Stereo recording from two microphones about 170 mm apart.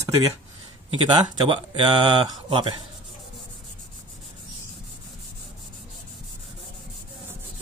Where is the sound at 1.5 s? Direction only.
30° right (ahead or behind).